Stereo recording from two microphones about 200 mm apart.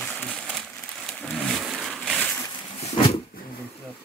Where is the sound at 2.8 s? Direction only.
30° left (ahead or behind).